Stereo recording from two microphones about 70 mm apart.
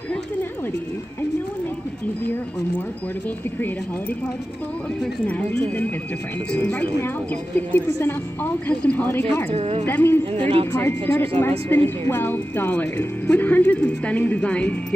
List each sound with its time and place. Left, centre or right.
5.2 s a woman's voice: left
7.5 s a woman's voice: left